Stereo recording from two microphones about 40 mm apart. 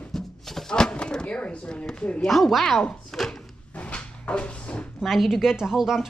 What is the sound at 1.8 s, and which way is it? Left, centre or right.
Speech, left.